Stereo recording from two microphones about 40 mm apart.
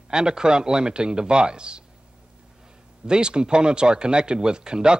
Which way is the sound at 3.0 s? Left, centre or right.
Right.